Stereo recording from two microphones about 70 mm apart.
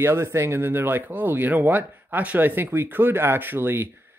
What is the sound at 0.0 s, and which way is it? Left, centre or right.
Speech, right.